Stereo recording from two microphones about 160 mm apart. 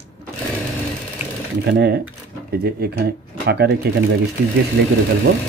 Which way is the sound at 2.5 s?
80° right.